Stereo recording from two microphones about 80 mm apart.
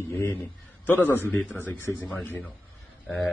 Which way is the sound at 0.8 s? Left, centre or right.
Left.